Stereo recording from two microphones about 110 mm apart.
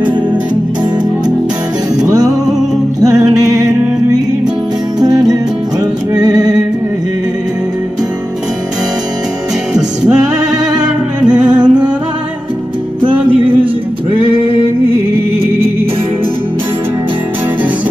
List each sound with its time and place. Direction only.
2.0 s music: 35° right (ahead or behind)
6.2 s music: 35° right (ahead or behind)
10.8 s music: 10° right (ahead or behind)